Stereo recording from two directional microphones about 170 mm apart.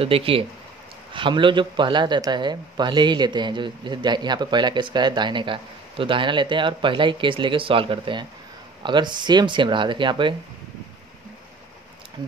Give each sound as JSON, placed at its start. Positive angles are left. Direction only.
{"t": 0.0, "sound": "a man's voice", "side_deg": -35}